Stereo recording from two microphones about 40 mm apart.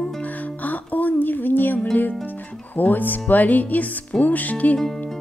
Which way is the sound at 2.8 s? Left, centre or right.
Left.